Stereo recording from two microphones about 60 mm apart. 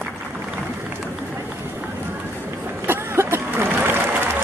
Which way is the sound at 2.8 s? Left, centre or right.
Right.